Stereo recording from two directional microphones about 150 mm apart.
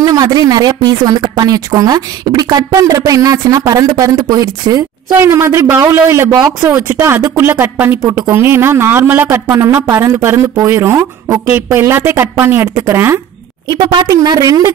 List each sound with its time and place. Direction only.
0.0 s a woman's voice: 25° right (ahead or behind)
13.7 s a woman's voice: 30° right (ahead or behind)